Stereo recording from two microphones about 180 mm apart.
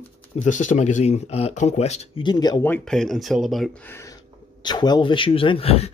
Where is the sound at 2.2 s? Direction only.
25° left (ahead or behind).